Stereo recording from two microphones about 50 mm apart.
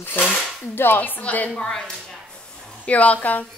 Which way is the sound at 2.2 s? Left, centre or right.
Centre.